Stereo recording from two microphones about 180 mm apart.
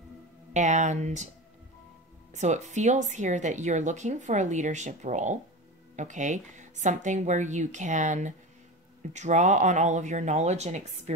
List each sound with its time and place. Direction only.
0.5 s speech: 40° right (ahead or behind)
2.3 s speech: 40° right (ahead or behind)